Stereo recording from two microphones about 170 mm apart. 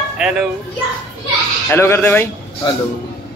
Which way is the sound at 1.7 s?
15° left (ahead or behind).